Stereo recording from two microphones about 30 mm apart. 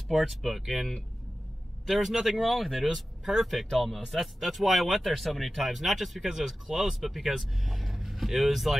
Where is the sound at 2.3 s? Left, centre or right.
Centre.